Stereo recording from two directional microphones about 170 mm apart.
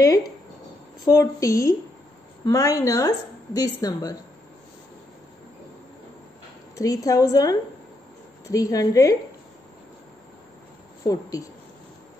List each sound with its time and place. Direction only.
1.0 s a woman's voice: 20° left (ahead or behind)
6.7 s a woman's voice: 20° left (ahead or behind)
11.1 s a woman's voice: 20° left (ahead or behind)